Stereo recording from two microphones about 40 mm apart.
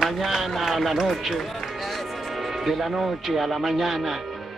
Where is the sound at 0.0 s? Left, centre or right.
Centre.